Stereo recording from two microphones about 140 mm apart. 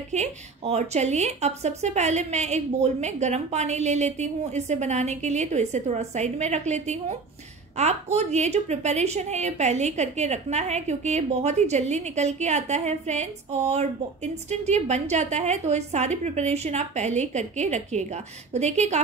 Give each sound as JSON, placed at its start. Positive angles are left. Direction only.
{"t": 0.1, "sound": "a woman's voice", "side_deg": -55}